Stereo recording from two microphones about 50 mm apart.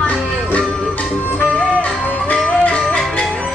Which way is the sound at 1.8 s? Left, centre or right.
Left.